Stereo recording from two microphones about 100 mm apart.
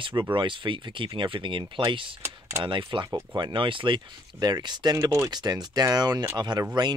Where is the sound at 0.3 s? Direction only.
55° right (ahead or behind).